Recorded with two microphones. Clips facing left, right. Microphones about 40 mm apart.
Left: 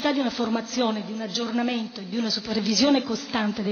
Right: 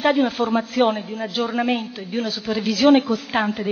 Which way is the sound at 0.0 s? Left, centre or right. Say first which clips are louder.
Right 6 dB; right.